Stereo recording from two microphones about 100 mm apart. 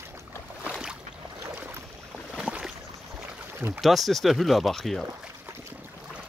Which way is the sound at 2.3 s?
5° right (ahead or behind).